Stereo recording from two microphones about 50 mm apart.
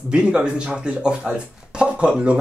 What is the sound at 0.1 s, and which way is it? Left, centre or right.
Speech, centre.